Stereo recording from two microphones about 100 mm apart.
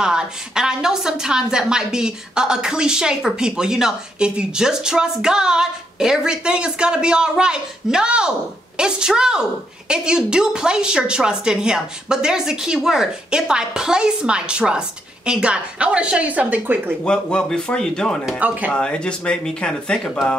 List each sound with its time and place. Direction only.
0.0 s a woman's voice: 5° right (ahead or behind)
17.0 s speech: 10° left (ahead or behind)
18.4 s a woman's voice: 15° right (ahead or behind)
18.7 s speech: 10° left (ahead or behind)